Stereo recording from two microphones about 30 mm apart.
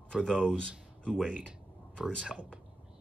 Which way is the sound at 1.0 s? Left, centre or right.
Left.